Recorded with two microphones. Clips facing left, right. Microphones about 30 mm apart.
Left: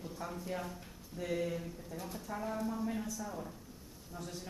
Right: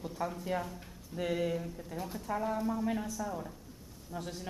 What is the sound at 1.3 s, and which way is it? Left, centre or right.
A woman's voice, right.